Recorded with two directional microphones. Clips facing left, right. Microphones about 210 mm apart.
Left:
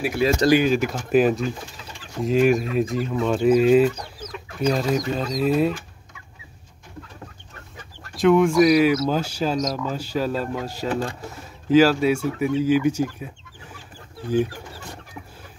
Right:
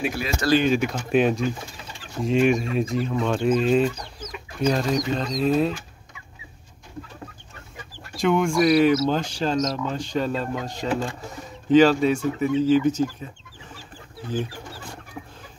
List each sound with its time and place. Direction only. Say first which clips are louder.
0.2 s speech: left 9 dB; 30° left (ahead or behind)
0.7 s speech: left 1 dB; centre (ahead or behind)
8.2 s speech: left 4 dB; centre (ahead or behind)